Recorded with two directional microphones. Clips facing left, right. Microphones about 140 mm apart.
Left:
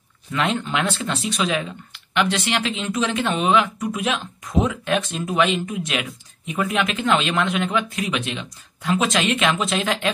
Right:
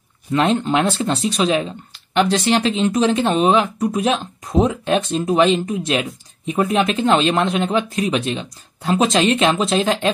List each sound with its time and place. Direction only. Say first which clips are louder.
0.3 s speech: right 6 dB; 35° right (ahead or behind)